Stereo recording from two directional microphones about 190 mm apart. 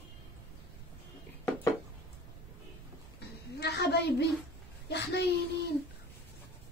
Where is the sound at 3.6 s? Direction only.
60° left (ahead or behind).